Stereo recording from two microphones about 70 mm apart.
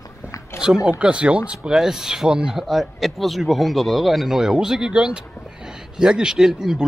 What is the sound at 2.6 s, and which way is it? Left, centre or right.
Speech, centre.